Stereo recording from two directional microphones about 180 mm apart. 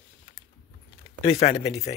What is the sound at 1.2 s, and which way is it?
Speech, 35° left (ahead or behind).